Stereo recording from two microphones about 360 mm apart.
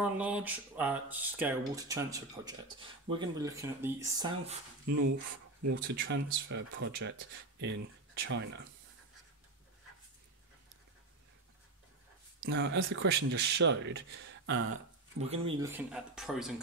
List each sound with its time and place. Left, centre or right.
0.0 s speech: centre
5.6 s speech: right
6.0 s speech: right
12.4 s speech: right
15.4 s speech: centre